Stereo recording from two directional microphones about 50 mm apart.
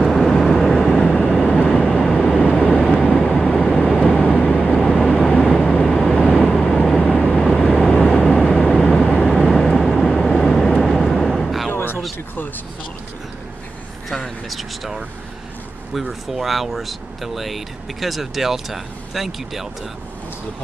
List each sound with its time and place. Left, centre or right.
0.0 s vehicle: centre
8.2 s vehicle: centre
11.7 s a sound: left
14.0 s vehicle: centre
15.9 s speech: centre